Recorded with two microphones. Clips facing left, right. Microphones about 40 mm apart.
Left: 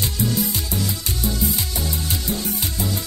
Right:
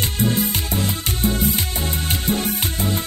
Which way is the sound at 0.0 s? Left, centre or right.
Right.